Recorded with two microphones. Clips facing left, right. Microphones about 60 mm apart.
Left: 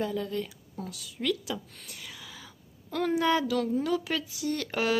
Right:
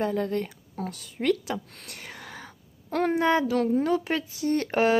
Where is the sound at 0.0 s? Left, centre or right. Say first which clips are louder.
Right 4 dB; right.